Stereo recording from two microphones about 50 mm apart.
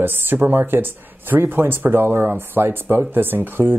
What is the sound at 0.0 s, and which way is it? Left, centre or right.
Speech, right.